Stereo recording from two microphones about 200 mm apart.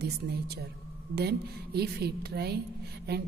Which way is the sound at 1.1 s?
55° right (ahead or behind).